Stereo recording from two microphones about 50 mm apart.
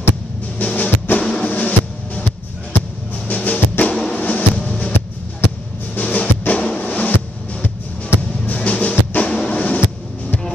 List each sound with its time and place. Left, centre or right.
0.6 s music: left
3.3 s music: left
3.9 s music: centre
4.2 s music: left
5.9 s music: left
8.5 s music: left
9.5 s a sound: left